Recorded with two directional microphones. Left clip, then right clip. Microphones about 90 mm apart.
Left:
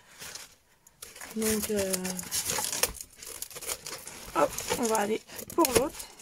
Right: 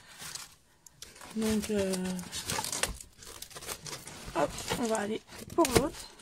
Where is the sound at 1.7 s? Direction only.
5° left (ahead or behind).